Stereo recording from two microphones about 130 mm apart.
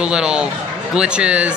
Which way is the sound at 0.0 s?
5° right (ahead or behind).